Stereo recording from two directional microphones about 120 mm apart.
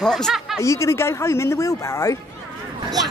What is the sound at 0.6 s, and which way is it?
Speech, 25° left (ahead or behind).